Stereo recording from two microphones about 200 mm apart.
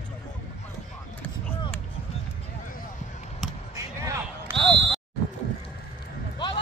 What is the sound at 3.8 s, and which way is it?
Music, 15° right (ahead or behind).